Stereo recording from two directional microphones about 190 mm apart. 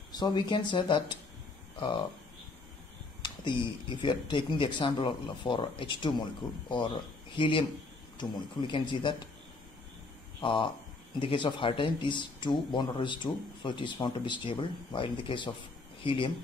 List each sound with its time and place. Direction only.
0.1 s speech: 20° left (ahead or behind)
3.2 s speech: 25° left (ahead or behind)
7.3 s speech: 25° left (ahead or behind)
10.4 s speech: 25° left (ahead or behind)